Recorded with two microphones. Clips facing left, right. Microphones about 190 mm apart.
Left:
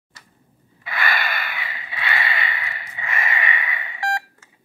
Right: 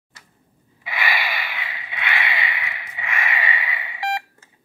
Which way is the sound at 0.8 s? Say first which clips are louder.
Left 1 dB; 5° right (ahead or behind).